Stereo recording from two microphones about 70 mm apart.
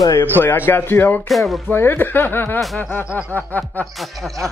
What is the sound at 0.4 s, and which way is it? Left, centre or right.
Speech, left.